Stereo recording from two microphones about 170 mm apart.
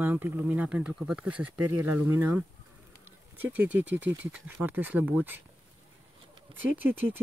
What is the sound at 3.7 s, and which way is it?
Speech, 90° right.